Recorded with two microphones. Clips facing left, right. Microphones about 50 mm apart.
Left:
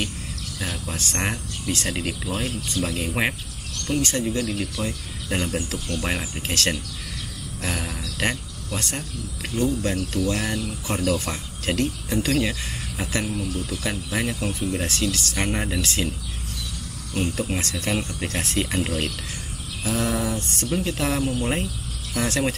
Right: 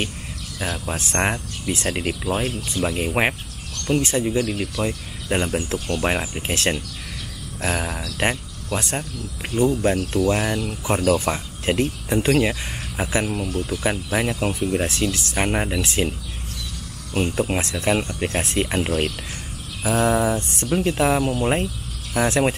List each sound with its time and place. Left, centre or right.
0.8 s speech: right
10.1 s speech: centre
17.2 s speech: right